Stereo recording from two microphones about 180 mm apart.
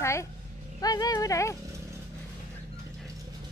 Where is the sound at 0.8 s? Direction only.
20° left (ahead or behind).